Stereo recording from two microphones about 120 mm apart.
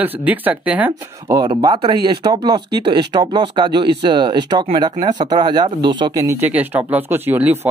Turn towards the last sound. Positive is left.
turn(degrees=-15)  # may be behind; listen again after turning